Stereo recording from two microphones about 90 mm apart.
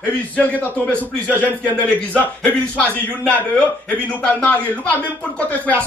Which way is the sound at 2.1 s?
15° left (ahead or behind).